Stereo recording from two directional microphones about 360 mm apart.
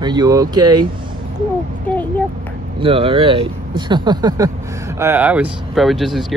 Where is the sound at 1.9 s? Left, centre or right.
Centre.